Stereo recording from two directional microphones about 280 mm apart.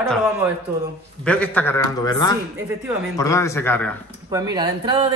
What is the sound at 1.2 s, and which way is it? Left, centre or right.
A man's voice, centre.